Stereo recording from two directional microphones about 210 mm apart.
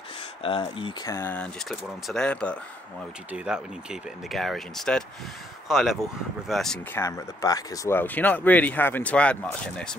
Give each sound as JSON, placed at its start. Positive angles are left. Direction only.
{"t": 0.4, "sound": "speech", "side_deg": 25}
{"t": 1.1, "sound": "speech", "side_deg": 10}
{"t": 7.0, "sound": "speech", "side_deg": 15}